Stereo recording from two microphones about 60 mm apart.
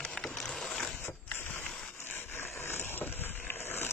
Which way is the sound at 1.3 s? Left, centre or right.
Left.